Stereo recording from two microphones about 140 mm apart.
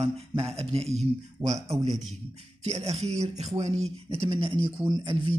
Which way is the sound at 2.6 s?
50° right (ahead or behind).